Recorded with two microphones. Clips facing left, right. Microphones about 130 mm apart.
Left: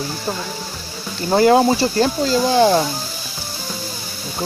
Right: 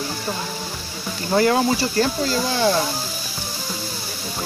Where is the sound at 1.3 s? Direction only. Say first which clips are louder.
Left 5 dB; 25° left (ahead or behind).